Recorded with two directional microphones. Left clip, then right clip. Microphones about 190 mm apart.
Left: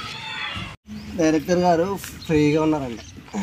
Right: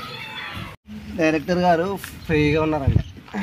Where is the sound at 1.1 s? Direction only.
10° left (ahead or behind).